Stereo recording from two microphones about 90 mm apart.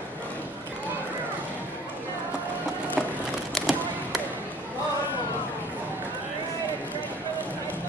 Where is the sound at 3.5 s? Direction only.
Centre (ahead or behind).